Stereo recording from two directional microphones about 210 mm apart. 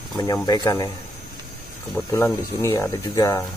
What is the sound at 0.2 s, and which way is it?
Speech, 20° left (ahead or behind).